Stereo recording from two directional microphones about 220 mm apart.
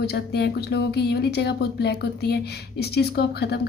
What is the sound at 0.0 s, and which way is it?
Speech, 45° left (ahead or behind).